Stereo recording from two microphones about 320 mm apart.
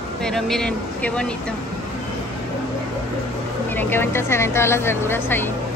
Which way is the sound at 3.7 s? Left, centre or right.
Centre.